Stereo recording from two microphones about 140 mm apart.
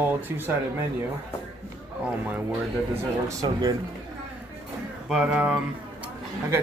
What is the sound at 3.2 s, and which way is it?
Speech, 25° right (ahead or behind).